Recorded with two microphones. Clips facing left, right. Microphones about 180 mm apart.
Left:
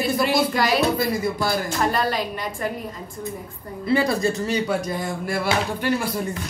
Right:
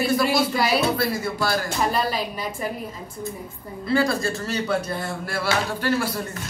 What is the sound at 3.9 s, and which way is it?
Speech, 20° left (ahead or behind).